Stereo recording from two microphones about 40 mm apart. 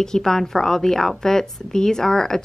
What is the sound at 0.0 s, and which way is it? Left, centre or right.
Speech, centre.